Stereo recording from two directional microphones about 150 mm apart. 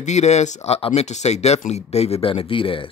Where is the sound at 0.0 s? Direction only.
50° left (ahead or behind).